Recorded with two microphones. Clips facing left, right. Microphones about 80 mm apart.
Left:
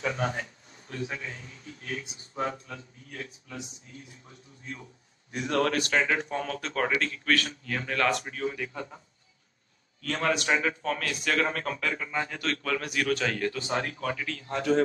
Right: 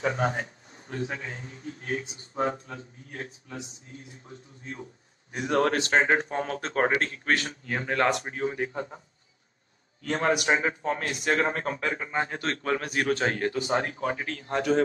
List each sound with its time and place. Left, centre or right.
0.0 s a man's voice: right
10.0 s a man's voice: right